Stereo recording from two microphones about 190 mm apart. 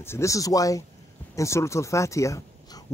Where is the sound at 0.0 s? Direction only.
15° left (ahead or behind).